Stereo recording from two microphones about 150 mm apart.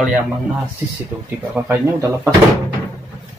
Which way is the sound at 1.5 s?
15° right (ahead or behind).